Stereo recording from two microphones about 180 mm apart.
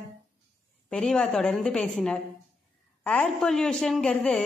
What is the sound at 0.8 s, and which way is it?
A woman's voice, 5° left (ahead or behind).